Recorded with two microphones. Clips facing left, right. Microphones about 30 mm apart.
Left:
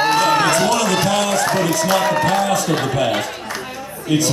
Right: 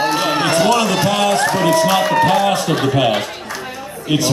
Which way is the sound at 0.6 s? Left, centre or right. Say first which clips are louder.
Right 3 dB; centre.